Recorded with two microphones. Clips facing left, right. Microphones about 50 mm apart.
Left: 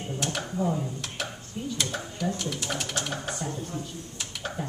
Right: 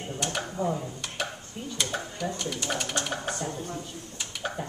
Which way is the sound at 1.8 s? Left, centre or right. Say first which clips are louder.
Right 3 dB; centre.